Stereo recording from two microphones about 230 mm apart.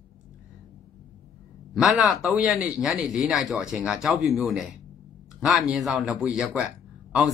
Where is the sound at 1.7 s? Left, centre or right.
Centre.